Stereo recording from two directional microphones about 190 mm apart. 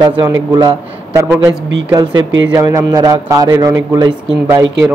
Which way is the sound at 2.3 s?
90° right.